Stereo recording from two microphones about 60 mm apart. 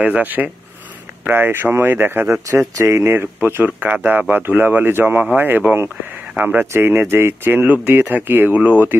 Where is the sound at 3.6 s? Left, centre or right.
Right.